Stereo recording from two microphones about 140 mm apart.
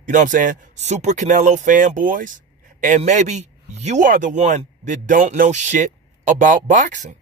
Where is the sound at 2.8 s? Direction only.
60° right (ahead or behind).